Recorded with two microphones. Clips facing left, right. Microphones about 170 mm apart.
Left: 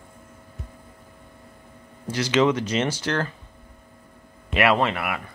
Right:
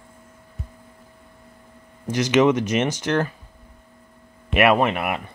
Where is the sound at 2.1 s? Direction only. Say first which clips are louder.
Right 3 dB; 15° right (ahead or behind).